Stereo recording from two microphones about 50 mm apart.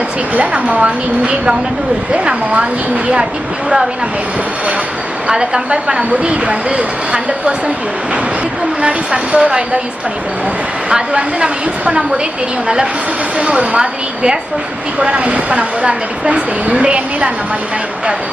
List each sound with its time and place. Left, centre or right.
0.3 s speech: right
5.3 s a woman's voice: centre
8.8 s speech: right
10.9 s speech: centre
13.4 s speech: right